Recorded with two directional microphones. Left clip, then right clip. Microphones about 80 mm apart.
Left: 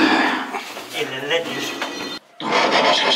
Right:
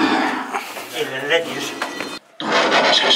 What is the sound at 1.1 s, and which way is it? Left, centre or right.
Music, centre.